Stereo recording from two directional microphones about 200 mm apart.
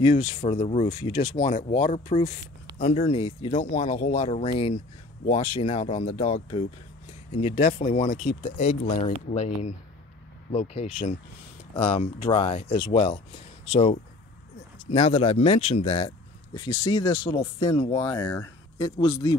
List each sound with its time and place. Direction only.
0.0 s speech: 35° left (ahead or behind)